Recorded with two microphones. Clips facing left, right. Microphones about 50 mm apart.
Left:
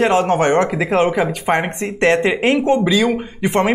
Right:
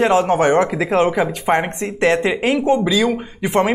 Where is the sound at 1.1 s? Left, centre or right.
Centre.